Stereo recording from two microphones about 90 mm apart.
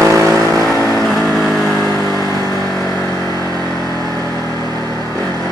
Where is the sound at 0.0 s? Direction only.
35° right (ahead or behind).